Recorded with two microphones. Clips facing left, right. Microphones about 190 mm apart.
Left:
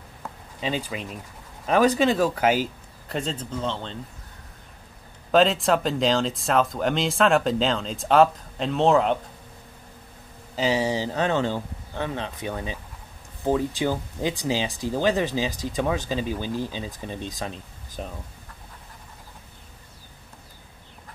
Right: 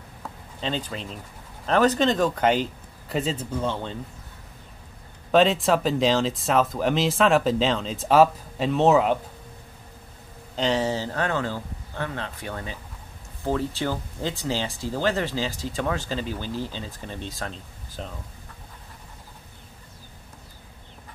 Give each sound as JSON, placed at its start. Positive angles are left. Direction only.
{"t": 0.2, "sound": "a sound", "side_deg": 10}
{"t": 1.7, "sound": "speech", "side_deg": 10}
{"t": 5.3, "sound": "speech", "side_deg": 0}
{"t": 10.5, "sound": "speech", "side_deg": 10}